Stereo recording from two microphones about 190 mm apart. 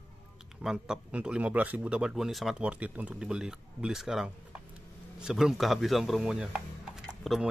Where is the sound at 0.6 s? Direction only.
5° right (ahead or behind).